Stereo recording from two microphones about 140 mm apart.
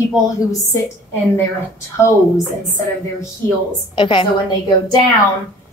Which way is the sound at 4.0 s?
35° left (ahead or behind).